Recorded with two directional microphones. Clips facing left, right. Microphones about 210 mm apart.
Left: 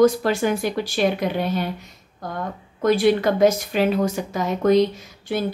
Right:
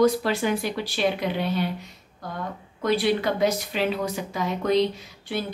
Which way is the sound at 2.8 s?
45° left (ahead or behind).